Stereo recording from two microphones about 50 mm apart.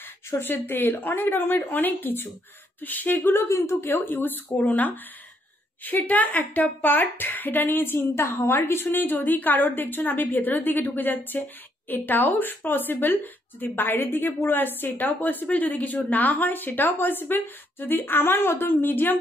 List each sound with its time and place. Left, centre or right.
0.3 s a woman's voice: left
3.4 s a woman's voice: left
3.8 s a woman's voice: left